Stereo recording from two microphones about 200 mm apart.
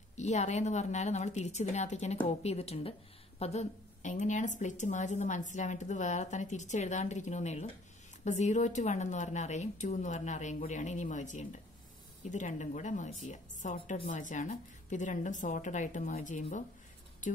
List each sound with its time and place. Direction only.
0.2 s a woman's voice: 35° left (ahead or behind)
13.7 s a woman's voice: 25° left (ahead or behind)
14.0 s a woman's voice: 40° left (ahead or behind)